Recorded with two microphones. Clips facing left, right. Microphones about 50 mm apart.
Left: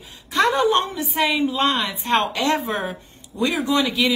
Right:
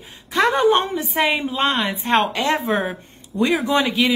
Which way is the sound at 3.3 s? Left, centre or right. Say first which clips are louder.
Right 4 dB; right.